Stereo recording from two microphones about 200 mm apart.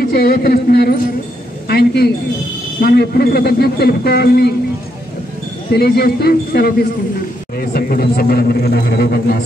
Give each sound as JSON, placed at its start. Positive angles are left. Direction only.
{"t": 0.0, "sound": "speech", "side_deg": 50}
{"t": 5.7, "sound": "speech", "side_deg": 50}